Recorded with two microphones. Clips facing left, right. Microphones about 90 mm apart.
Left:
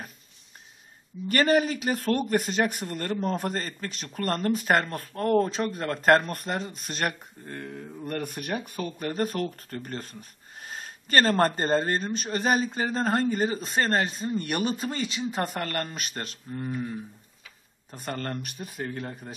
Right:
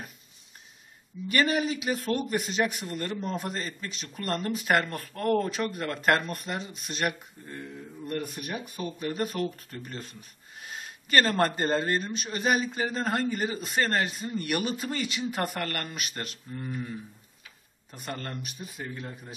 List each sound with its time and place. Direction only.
1.3 s speech: 45° left (ahead or behind)
7.5 s mantra: 65° left (ahead or behind)
8.6 s speech: centre (ahead or behind)
9.0 s speech: 40° left (ahead or behind)
16.5 s speech: 25° left (ahead or behind)
17.9 s speech: 40° left (ahead or behind)